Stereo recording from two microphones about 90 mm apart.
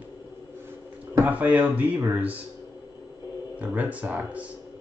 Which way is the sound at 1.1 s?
20° right (ahead or behind).